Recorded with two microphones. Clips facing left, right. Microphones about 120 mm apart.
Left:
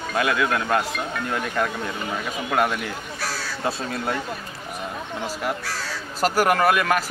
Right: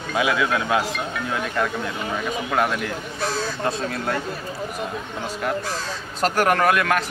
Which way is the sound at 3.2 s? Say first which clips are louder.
Right 7 dB; 20° right (ahead or behind).